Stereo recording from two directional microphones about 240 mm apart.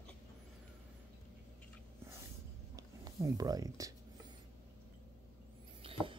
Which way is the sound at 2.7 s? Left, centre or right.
Centre.